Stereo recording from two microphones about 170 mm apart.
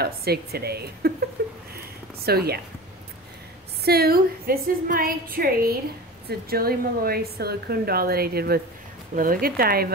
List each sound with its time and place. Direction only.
0.0 s a woman's voice: 65° right (ahead or behind)
1.4 s a sound: 60° right (ahead or behind)
2.2 s a woman's voice: 65° right (ahead or behind)
3.8 s a woman's voice: 65° right (ahead or behind)